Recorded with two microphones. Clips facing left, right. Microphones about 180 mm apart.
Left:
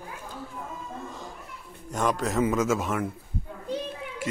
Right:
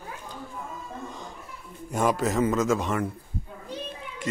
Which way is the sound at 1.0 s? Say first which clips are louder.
Even; centre (ahead or behind).